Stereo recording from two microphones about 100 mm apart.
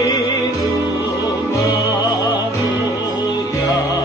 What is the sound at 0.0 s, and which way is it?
Music, 30° left (ahead or behind).